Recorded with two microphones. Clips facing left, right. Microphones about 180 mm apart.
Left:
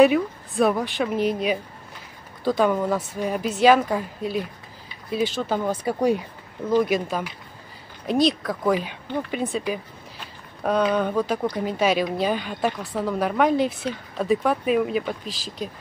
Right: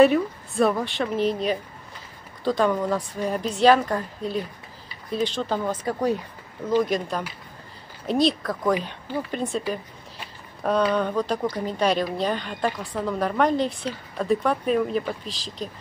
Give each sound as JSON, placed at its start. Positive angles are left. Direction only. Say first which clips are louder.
{"t": 0.0, "sound": "speech", "louder": "even", "side_deg": 0}